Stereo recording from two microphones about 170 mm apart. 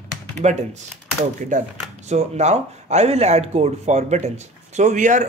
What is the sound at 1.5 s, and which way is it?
Speech, 45° right (ahead or behind).